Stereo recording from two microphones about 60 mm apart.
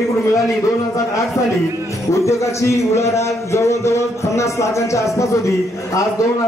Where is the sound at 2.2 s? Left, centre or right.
Left.